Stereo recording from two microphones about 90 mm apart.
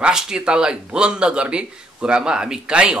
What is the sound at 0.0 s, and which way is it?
Speech, 10° right (ahead or behind).